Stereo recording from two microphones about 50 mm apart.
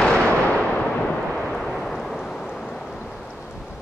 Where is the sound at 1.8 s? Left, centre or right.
Centre.